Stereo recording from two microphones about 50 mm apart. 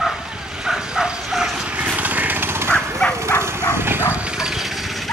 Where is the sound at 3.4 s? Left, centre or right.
Right.